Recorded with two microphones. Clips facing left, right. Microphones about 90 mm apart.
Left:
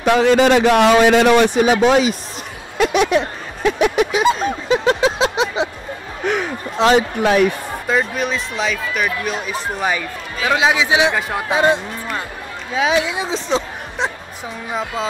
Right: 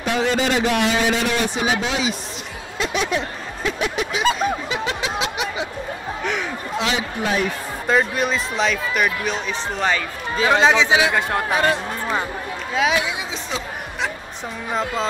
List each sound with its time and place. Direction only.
0.0 s a man's voice: 65° left (ahead or behind); by 2.1 s 50° left (ahead or behind)
2.8 s music: 65° left (ahead or behind)
3.8 s a man's voice: 65° left (ahead or behind)
4.4 s snicker: 35° left (ahead or behind)
6.2 s a man's voice: 45° left (ahead or behind)
7.8 s speech: centre (ahead or behind)
11.5 s speech: 20° left (ahead or behind)
14.7 s speech: 5° left (ahead or behind)